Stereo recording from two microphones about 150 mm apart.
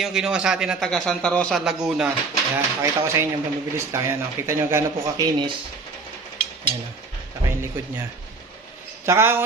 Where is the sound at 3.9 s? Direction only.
20° right (ahead or behind).